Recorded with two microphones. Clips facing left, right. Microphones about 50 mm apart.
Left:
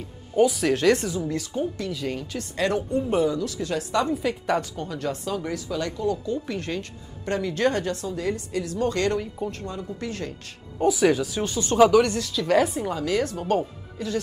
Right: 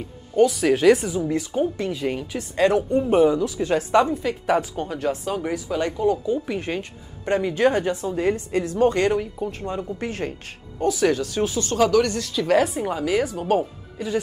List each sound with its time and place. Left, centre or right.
0.4 s speech: centre
0.7 s speech: centre
1.5 s speech: right
3.4 s speech: centre
4.1 s speech: centre
5.3 s speech: right
8.1 s speech: right
9.2 s speech: centre
9.7 s speech: right
10.8 s speech: centre
12.2 s speech: centre